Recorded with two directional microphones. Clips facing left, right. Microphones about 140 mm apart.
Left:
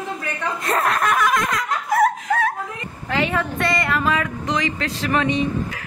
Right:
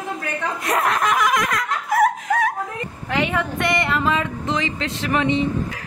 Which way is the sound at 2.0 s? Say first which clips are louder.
Right 1 dB; 10° right (ahead or behind).